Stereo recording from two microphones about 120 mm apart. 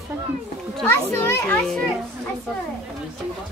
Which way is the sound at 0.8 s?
15° left (ahead or behind).